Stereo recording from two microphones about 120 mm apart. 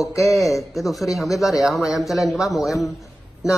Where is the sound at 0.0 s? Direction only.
25° left (ahead or behind).